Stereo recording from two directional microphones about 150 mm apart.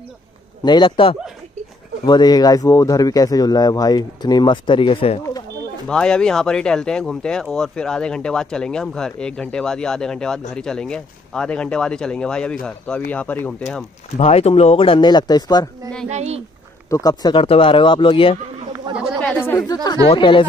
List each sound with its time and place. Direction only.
0.7 s speech: 35° left (ahead or behind)
5.9 s speech: 5° left (ahead or behind)
14.1 s speech: 45° left (ahead or behind); by 15.7 s 25° left (ahead or behind)
16.1 s speech: 45° right (ahead or behind)
16.9 s speech: 25° left (ahead or behind)
18.9 s chatter: 5° right (ahead or behind)
19.4 s speech: 20° left (ahead or behind)